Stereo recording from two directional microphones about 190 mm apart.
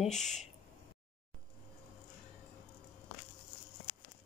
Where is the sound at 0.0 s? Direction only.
Centre (ahead or behind).